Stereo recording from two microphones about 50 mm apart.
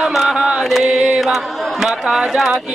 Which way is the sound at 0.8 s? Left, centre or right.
Right.